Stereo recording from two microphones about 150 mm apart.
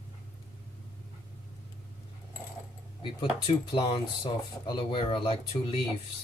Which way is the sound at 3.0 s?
30° left (ahead or behind).